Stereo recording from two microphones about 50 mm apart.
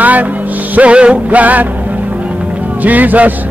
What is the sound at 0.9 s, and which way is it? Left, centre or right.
Music, right.